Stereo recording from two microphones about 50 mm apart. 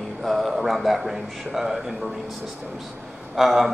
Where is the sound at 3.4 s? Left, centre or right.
Centre.